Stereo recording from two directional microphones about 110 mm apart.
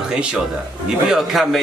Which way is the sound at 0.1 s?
5° right (ahead or behind).